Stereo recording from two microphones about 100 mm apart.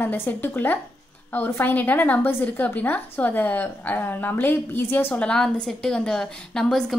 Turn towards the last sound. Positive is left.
turn(degrees=5)  # may be behind; listen again after turning